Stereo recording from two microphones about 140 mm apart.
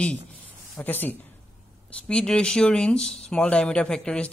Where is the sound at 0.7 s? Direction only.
15° left (ahead or behind).